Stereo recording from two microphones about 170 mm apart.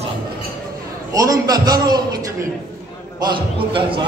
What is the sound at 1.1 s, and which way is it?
A man's voice, 20° right (ahead or behind).